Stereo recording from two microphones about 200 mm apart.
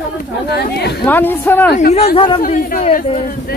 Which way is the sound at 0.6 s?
55° left (ahead or behind).